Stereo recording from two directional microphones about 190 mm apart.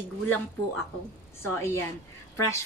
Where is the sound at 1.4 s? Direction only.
15° left (ahead or behind).